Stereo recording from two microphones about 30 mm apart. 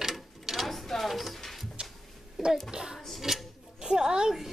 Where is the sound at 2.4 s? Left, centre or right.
Centre; by 4.3 s right.